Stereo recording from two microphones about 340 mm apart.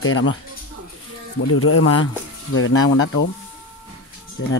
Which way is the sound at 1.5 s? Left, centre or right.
Left.